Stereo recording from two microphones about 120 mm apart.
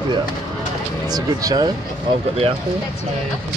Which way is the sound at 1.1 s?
30° right (ahead or behind).